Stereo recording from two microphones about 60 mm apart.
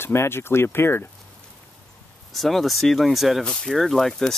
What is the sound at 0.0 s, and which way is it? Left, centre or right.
Speech, left.